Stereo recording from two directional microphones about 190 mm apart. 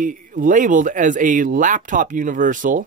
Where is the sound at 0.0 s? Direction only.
45° right (ahead or behind).